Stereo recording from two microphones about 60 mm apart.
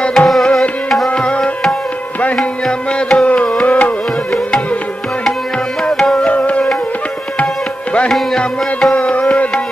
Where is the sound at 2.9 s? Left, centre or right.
Centre.